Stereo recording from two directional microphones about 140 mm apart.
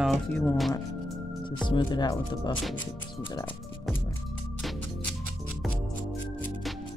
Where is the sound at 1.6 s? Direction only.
30° left (ahead or behind).